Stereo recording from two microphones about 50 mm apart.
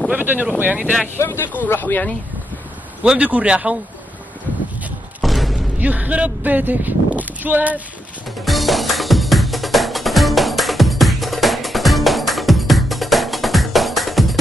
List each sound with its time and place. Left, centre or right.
0.1 s speech: right
1.1 s speech: left
1.7 s speech: left
3.0 s a man's voice: right
5.2 s a sound: centre
5.8 s speech: right
8.5 s music: centre